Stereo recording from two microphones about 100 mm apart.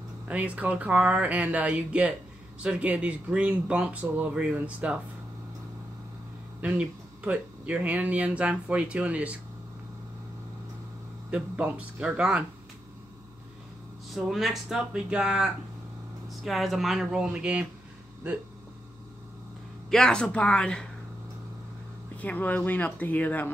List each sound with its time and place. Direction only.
0.3 s speech: 15° right (ahead or behind)
7.2 s speech: 15° right (ahead or behind)
11.2 s speech: 15° right (ahead or behind)
14.1 s speech: centre (ahead or behind)
19.9 s speech: 5° left (ahead or behind)
22.1 s speech: 15° left (ahead or behind)